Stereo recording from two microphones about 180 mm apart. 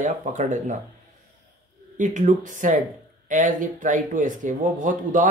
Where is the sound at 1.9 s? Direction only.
45° right (ahead or behind).